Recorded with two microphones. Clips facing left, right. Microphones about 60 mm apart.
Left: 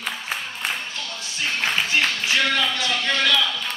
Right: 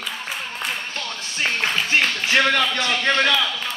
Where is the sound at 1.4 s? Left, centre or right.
Right.